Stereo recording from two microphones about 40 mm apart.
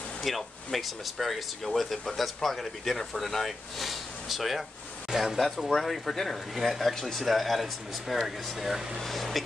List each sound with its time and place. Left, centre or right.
0.2 s speech: centre
5.8 s speech: centre